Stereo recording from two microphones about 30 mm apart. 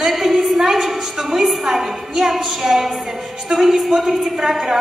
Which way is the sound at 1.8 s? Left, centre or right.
Centre.